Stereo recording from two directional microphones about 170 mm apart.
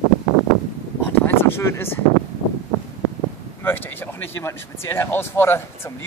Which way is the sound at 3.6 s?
10° left (ahead or behind).